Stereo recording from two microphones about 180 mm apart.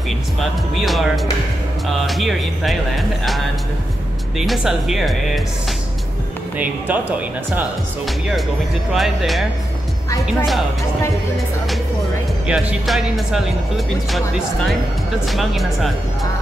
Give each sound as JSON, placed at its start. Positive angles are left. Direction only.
{"t": 0.4, "sound": "speech", "side_deg": 0}
{"t": 6.6, "sound": "speech", "side_deg": -10}
{"t": 8.9, "sound": "speech", "side_deg": 0}
{"t": 12.4, "sound": "speech", "side_deg": 0}